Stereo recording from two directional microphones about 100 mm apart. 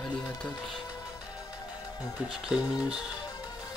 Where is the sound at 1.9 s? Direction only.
10° right (ahead or behind).